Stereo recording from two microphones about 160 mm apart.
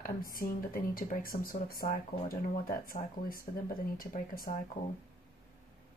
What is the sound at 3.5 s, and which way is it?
Speech, 50° left (ahead or behind).